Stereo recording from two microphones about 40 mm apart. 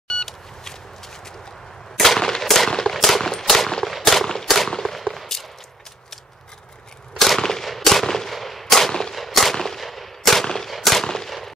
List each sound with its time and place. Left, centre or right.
0.2 s beep: centre
2.0 s gunshot: centre
2.8 s machine gun: centre
7.2 s machine gun: centre
7.7 s gunshot: centre
10.7 s firecracker: centre
11.1 s gunshot: centre